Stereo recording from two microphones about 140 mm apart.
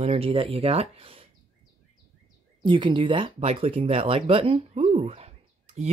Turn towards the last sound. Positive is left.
turn(degrees=-50)  # may be behind; listen again after turning